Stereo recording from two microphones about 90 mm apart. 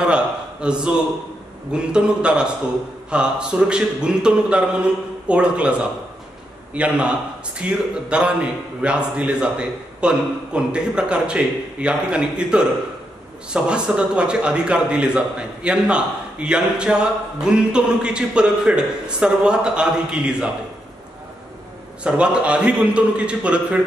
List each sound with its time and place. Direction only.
0.0 s a man's voice: 10° right (ahead or behind)
22.0 s a man's voice: 10° right (ahead or behind)